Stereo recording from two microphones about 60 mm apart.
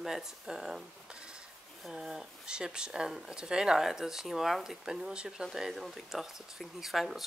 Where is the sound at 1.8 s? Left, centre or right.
Centre.